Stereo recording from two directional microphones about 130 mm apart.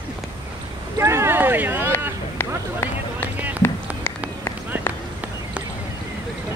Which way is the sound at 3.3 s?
10° right (ahead or behind).